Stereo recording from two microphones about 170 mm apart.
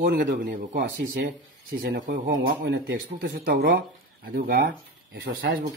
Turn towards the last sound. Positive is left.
turn(degrees=-75)  # may be behind; listen again after turning